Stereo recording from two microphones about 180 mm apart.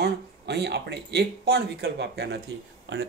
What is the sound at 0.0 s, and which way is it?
Speech, 65° right (ahead or behind).